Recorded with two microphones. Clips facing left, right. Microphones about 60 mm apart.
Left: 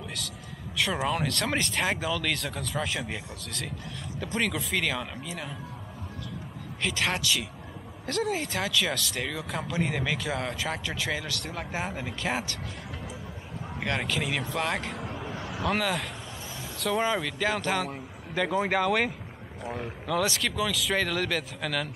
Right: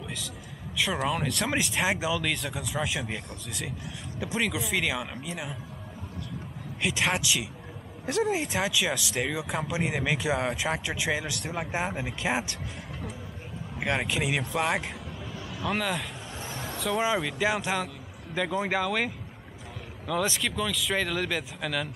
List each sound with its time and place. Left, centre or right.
1.0 s speech: centre
6.8 s speech: centre
13.7 s speech: centre
15.0 s vehicle: left
15.5 s speech: centre